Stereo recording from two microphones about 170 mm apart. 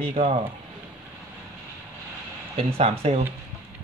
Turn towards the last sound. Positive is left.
turn(degrees=-35)  # may be behind; listen again after turning